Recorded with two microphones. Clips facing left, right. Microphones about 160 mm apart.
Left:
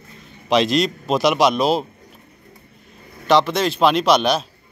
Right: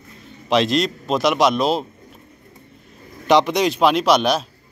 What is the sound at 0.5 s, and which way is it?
A man's voice, centre (ahead or behind).